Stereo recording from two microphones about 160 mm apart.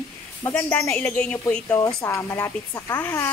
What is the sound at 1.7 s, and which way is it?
A woman's voice, 20° left (ahead or behind).